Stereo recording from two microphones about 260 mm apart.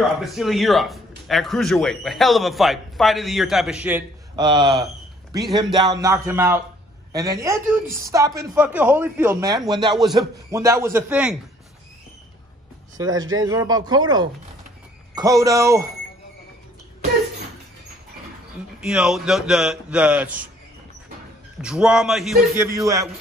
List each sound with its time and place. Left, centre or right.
0.2 s speech: centre
4.4 s speech: centre
12.9 s speech: centre
18.8 s speech: centre
21.5 s speech: centre
22.7 s speech: centre